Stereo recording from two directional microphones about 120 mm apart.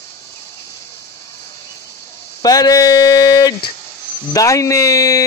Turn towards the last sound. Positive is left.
turn(degrees=30)  # may be behind; listen again after turning